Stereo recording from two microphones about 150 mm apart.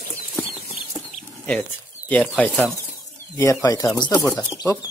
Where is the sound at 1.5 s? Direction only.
10° left (ahead or behind).